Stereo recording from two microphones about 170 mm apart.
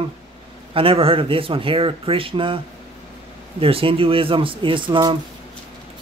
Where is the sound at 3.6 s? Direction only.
35° right (ahead or behind).